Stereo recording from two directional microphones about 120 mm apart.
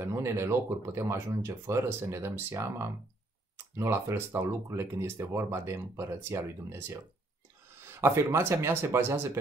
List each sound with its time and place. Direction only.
0.0 s speech: 25° right (ahead or behind)